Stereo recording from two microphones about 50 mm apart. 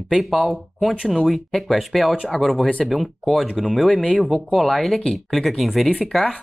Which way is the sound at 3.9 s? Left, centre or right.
Centre.